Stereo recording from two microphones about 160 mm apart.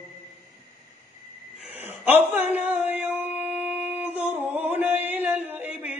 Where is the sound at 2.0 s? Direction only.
10° right (ahead or behind).